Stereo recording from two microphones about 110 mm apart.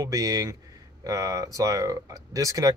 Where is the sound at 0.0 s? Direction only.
30° right (ahead or behind).